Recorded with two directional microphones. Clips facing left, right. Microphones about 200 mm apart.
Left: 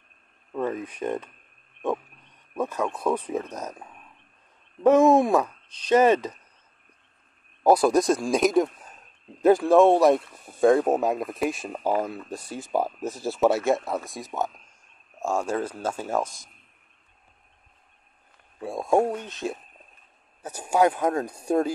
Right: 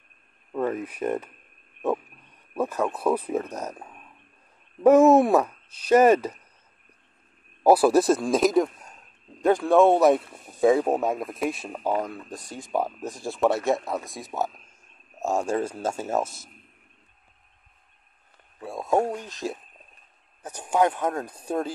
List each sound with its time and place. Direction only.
0.5 s speech: 10° right (ahead or behind)
2.5 s speech: 10° right (ahead or behind)
4.8 s speech: 10° right (ahead or behind)
7.6 s speech: 5° right (ahead or behind)
15.5 s speech: 10° right (ahead or behind)
18.6 s speech: 15° left (ahead or behind)
19.1 s speech: centre (ahead or behind)